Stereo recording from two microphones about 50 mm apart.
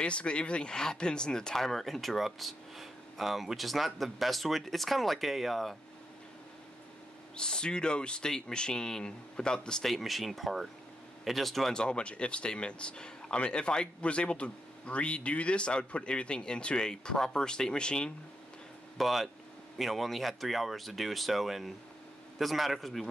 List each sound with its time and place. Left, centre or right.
0.0 s speech: left; by 5.8 s centre
7.3 s speech: centre
9.8 s speech: centre
11.7 s speech: centre
18.9 s speech: centre